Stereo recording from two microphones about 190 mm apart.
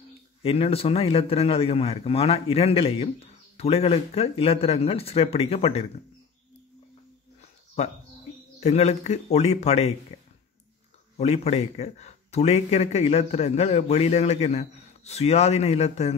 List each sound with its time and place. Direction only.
0.4 s a man's voice: 30° left (ahead or behind)
7.8 s a man's voice: 35° left (ahead or behind)
11.1 s a man's voice: 35° left (ahead or behind)